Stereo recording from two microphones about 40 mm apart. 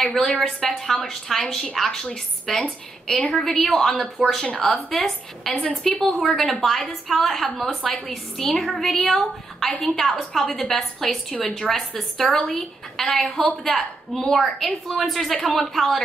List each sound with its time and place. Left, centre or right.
0.0 s a woman's voice: centre
3.7 s a woman's voice: centre
4.0 s a woman's voice: centre